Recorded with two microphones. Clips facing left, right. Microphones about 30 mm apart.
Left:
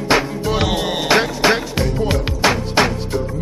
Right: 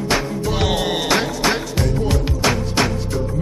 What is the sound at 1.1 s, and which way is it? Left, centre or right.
Music, centre.